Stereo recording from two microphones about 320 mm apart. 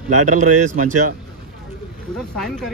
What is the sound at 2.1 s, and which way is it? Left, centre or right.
Speech, centre.